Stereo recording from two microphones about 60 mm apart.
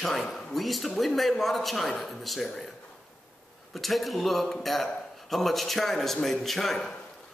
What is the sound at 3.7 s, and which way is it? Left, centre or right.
A man's voice, centre.